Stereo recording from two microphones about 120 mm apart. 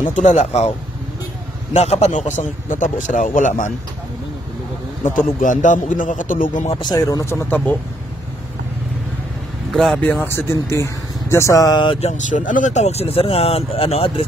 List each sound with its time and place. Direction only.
0.1 s speech: 85° left; by 0.7 s 70° left (ahead or behind)
1.7 s a man's voice: 65° left (ahead or behind); by 3.7 s 90° left
5.1 s a man's voice: 90° left
6.8 s speech: 35° left (ahead or behind)
9.8 s speech: 10° left (ahead or behind); by 12.0 s 40° left (ahead or behind)
12.0 s speech: 80° left; by 14.2 s 55° left (ahead or behind)